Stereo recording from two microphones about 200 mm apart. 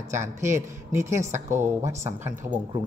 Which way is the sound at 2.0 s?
10° right (ahead or behind).